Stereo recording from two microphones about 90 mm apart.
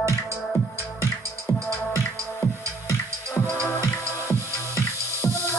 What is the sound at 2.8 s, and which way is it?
Music, 35° left (ahead or behind).